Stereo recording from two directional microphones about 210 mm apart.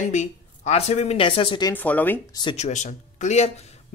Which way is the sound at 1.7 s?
10° left (ahead or behind).